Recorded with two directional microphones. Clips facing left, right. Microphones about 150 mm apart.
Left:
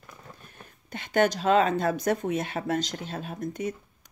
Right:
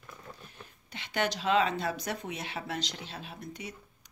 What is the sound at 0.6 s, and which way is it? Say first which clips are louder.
Speech: left 6 dB; 50° left (ahead or behind).